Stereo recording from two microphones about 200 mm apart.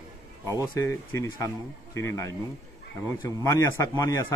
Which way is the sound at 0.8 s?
15° left (ahead or behind).